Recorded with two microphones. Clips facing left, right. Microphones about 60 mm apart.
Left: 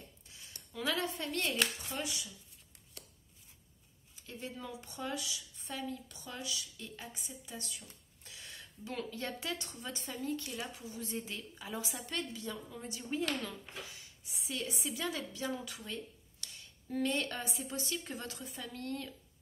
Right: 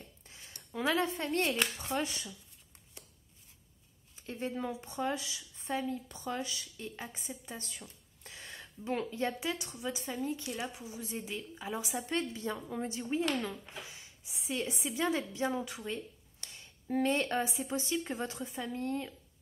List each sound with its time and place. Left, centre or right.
0.3 s speech: right
4.3 s speech: right
8.2 s a sound: right
9.4 s a woman's voice: centre